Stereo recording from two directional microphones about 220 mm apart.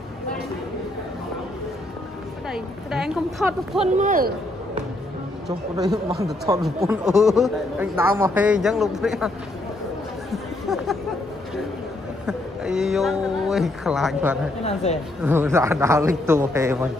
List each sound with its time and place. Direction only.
2.5 s a man's voice: centre (ahead or behind)
3.8 s speech: 35° right (ahead or behind)
6.6 s a man's voice: centre (ahead or behind)
10.3 s chatter: centre (ahead or behind)
12.3 s speech: centre (ahead or behind)
14.6 s a woman's voice: 30° left (ahead or behind)
15.2 s a man's voice: 10° right (ahead or behind)